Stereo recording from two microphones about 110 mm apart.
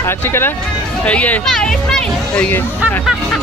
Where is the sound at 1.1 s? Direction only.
10° left (ahead or behind).